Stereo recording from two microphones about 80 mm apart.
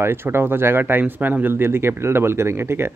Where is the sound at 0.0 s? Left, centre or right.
Right.